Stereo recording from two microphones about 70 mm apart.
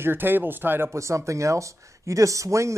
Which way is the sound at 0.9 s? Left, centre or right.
Right.